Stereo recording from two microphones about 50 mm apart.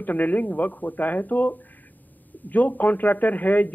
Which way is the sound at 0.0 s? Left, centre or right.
Left.